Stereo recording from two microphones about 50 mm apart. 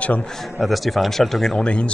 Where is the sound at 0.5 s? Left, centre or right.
Centre.